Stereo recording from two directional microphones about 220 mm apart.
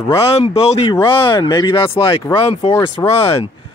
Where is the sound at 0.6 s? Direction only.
25° left (ahead or behind).